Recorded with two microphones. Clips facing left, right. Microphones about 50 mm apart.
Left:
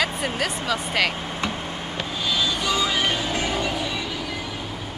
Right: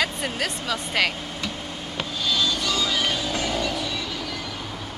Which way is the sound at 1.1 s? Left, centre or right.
Left.